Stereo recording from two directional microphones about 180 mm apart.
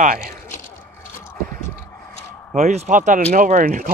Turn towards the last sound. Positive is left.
turn(degrees=-45)  # may be behind; listen again after turning